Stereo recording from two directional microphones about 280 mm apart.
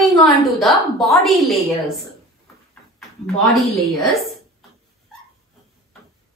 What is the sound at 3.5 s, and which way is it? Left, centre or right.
Speech, centre.